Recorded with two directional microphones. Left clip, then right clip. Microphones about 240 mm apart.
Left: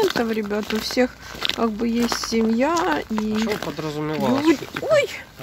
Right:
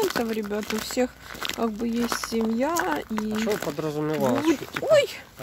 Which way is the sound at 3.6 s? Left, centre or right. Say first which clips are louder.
Left 1 dB; right.